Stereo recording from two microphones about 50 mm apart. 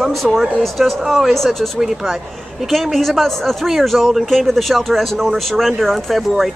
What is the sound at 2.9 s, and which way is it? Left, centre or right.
Speech, centre.